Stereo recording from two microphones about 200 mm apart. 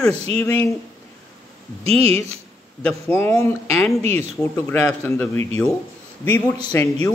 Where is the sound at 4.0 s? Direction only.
30° right (ahead or behind).